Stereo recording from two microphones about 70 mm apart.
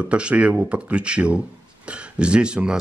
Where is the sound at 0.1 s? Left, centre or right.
Centre.